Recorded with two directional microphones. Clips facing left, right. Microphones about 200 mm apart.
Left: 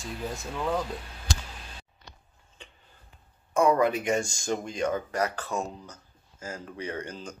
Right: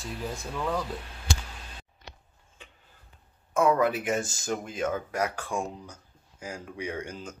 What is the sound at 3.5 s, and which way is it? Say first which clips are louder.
Speech: left 1 dB; centre (ahead or behind).